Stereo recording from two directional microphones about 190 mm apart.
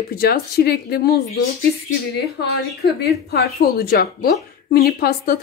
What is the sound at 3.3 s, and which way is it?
A woman's voice, 55° left (ahead or behind).